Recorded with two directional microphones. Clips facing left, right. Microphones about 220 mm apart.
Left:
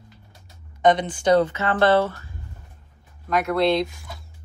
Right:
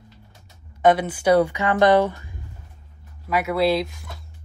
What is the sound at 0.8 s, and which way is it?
Speech, 5° right (ahead or behind).